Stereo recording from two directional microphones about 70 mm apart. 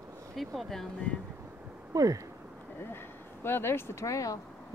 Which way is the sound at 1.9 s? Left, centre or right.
Right.